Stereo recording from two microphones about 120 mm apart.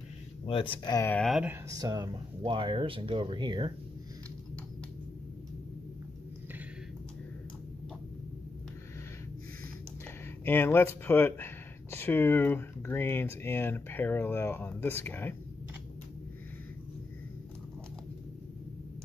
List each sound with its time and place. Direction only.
0.5 s speech: 45° left (ahead or behind)
1.7 s speech: 30° right (ahead or behind)
2.4 s speech: 45° right (ahead or behind)
10.4 s speech: 20° left (ahead or behind)